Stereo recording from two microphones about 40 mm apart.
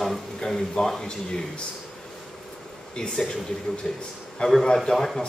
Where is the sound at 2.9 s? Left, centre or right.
Centre.